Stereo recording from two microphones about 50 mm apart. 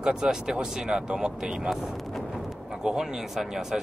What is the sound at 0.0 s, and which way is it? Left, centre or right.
Speech, centre.